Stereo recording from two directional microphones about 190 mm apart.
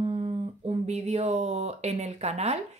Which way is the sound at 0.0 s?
30° right (ahead or behind).